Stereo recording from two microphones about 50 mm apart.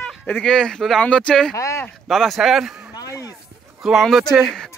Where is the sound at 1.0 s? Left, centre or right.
Centre.